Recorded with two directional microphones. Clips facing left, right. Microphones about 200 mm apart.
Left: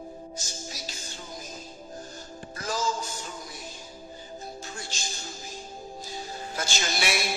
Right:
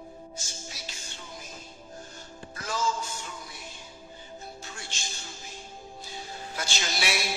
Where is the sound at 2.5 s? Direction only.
40° left (ahead or behind).